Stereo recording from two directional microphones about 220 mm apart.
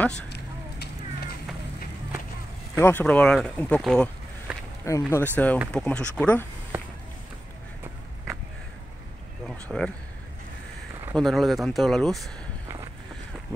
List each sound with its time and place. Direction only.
0.3 s a sound: 50° left (ahead or behind)
2.7 s speech: 10° left (ahead or behind)
4.8 s speech: 15° left (ahead or behind)
6.7 s run: 10° right (ahead or behind)
9.5 s speech: 5° left (ahead or behind)
11.1 s speech: centre (ahead or behind)